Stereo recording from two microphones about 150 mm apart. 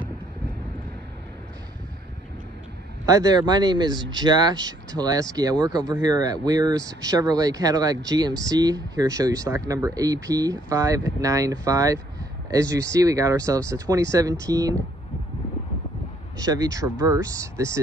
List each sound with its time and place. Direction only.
3.1 s speech: 25° right (ahead or behind)
16.3 s speech: 25° right (ahead or behind)